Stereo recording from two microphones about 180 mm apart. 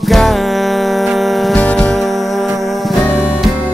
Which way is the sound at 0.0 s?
Centre (ahead or behind).